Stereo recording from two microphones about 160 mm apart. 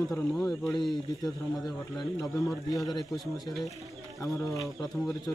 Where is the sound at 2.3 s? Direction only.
20° left (ahead or behind).